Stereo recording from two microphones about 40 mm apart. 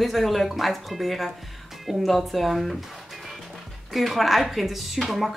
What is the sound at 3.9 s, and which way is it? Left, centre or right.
Speech, centre.